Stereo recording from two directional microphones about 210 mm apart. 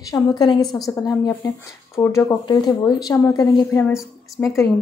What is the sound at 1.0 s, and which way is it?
A woman's voice, 15° left (ahead or behind).